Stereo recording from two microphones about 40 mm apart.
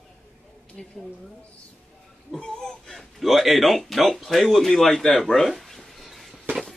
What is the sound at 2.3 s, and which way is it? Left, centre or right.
Speech, centre.